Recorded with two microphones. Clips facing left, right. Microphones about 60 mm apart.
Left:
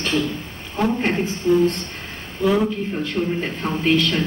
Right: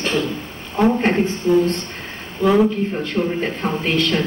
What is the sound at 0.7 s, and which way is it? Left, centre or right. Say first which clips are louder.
Speech: right 4 dB; centre.